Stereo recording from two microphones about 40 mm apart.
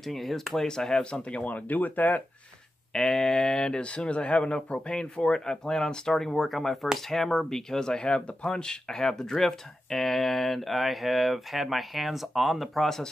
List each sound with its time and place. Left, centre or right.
0.0 s speech: centre
0.7 s speech: centre
1.3 s speech: left
2.9 s speech: centre
4.9 s speech: centre
12.8 s speech: centre